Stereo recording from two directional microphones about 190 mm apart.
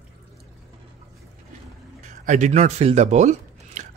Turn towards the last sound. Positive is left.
turn(degrees=-40)  # may be behind; listen again after turning